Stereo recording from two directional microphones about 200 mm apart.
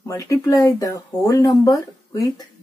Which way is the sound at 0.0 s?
15° left (ahead or behind).